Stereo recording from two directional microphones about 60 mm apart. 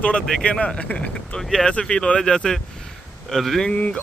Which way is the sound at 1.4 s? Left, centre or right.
Centre.